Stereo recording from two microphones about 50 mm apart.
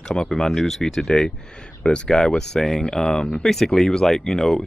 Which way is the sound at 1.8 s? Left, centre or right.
Centre.